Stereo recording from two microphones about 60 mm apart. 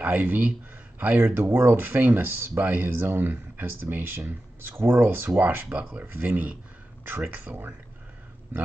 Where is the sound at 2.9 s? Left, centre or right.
Right.